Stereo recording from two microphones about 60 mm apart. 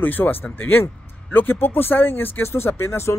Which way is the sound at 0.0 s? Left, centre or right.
Left.